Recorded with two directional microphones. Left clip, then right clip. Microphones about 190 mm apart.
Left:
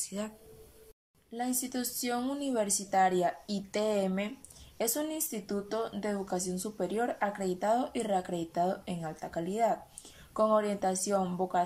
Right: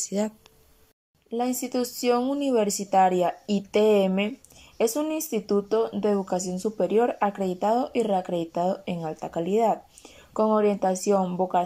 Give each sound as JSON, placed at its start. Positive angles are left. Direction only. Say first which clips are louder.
{"t": 0.0, "sound": "speech", "louder": "right 11 dB", "side_deg": -35}
{"t": 1.3, "sound": "speech", "louder": "right 8 dB", "side_deg": -10}